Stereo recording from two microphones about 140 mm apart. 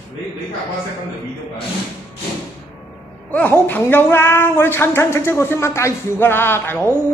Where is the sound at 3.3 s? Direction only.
10° left (ahead or behind).